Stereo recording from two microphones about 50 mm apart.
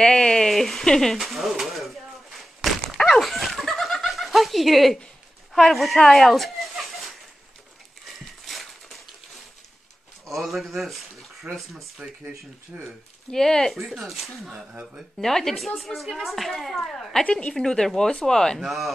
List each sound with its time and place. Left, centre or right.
0.0 s a sound: centre
0.8 s speech: centre
1.1 s a sound: centre
3.2 s snicker: centre
5.5 s speech: centre
8.5 s crushing: centre
10.2 s a man's voice: centre
11.5 s speech: right
13.3 s speech: centre
14.0 s speech: centre
17.2 s a woman's voice: left
17.6 s speech: centre
18.6 s speech: centre